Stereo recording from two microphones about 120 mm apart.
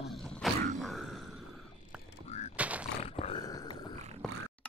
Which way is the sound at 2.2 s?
65° left (ahead or behind).